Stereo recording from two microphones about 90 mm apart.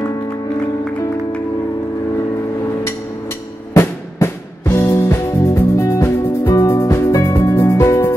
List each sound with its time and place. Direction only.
3.7 s music: 30° left (ahead or behind)